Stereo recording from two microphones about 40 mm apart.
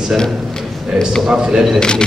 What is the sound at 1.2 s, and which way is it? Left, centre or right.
Speech, centre.